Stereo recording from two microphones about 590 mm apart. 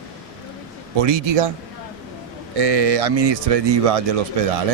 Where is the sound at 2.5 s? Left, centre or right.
Right.